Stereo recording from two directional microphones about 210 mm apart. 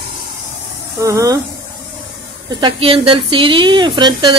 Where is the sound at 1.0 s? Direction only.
15° right (ahead or behind).